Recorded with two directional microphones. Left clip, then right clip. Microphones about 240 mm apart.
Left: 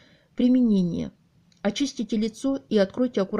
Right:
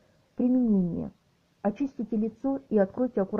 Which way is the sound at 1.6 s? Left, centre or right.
Left.